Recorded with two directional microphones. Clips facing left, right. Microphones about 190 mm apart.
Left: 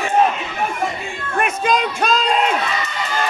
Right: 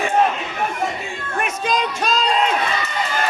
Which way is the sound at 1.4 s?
60° left (ahead or behind).